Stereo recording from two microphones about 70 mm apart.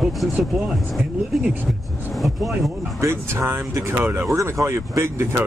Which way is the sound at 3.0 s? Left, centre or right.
Right.